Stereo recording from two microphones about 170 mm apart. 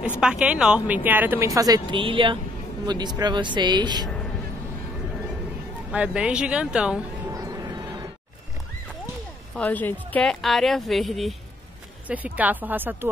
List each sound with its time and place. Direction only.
0.2 s speech: 5° right (ahead or behind); by 4.1 s 25° right (ahead or behind)
5.9 s a woman's voice: 5° right (ahead or behind)
7.2 s music: 20° right (ahead or behind)
9.6 s a woman's voice: 10° left (ahead or behind); by 13.1 s 10° right (ahead or behind)